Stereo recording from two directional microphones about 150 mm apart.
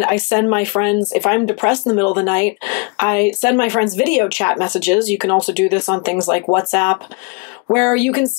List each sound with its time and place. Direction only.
0.0 s speech: 15° left (ahead or behind)